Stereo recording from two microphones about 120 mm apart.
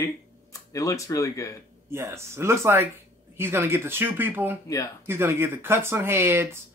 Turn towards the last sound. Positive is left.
turn(degrees=-20)  # may be behind; listen again after turning